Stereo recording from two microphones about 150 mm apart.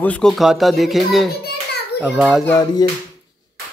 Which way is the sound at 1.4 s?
90° left.